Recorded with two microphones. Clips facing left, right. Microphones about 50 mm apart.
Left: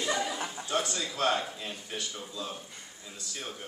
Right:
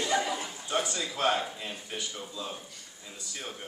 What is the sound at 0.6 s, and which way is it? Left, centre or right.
Speech, centre.